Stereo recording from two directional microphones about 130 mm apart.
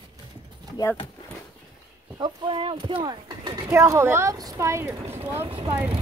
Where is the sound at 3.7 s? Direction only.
20° right (ahead or behind).